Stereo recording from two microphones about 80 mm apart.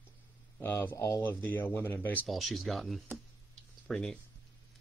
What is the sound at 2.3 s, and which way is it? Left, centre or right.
Speech, centre.